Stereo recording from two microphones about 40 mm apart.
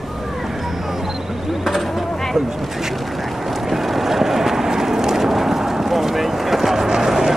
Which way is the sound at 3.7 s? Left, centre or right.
Centre.